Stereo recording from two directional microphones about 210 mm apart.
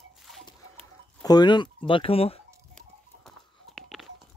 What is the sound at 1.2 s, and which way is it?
Speech, 20° left (ahead or behind).